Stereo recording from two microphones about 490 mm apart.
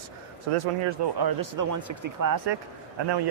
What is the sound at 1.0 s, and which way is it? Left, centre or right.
Speech, right.